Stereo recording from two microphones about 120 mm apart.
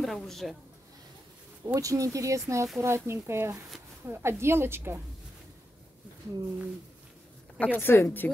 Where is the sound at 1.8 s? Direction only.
25° right (ahead or behind).